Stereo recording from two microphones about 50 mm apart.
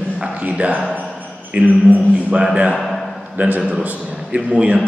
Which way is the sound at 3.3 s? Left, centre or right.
Right.